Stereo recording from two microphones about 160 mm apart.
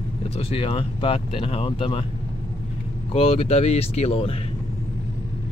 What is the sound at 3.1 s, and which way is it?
Speech, 40° left (ahead or behind).